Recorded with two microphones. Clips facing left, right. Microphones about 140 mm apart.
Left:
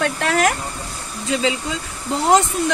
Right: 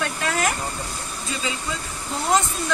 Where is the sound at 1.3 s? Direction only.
90° left.